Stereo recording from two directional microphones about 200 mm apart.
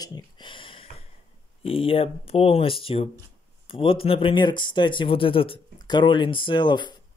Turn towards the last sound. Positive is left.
turn(degrees=25)  # may be behind; listen again after turning